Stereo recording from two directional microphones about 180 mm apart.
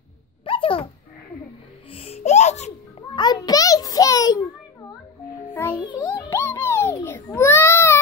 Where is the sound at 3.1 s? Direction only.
20° left (ahead or behind).